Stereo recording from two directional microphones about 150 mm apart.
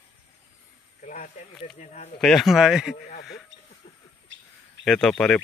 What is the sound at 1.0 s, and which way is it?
Speech, 60° left (ahead or behind).